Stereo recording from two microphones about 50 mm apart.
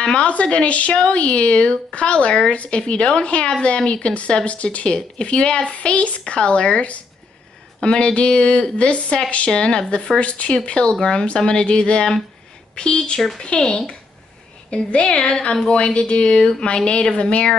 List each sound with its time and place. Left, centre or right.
0.0 s speech: left